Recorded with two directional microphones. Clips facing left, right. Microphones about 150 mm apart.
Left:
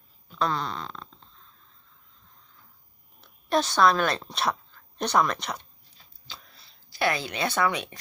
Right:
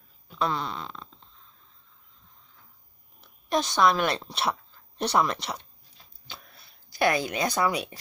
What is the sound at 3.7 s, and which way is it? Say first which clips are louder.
A woman's voice: even; 20° right (ahead or behind).